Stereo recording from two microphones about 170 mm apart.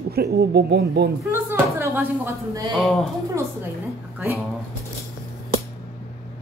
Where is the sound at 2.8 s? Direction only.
5° left (ahead or behind).